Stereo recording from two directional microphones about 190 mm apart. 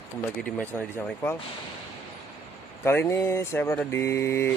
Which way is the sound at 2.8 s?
15° left (ahead or behind).